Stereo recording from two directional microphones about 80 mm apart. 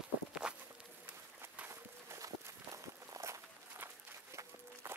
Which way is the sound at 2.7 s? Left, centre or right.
Right.